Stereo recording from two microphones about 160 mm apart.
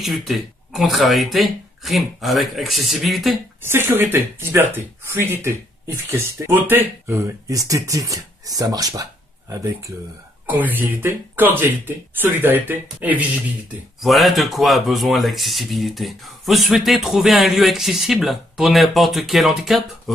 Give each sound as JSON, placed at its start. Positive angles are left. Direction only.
{"t": 0.0, "sound": "speech", "side_deg": 0}
{"t": 3.6, "sound": "speech", "side_deg": -15}
{"t": 13.9, "sound": "speech", "side_deg": 0}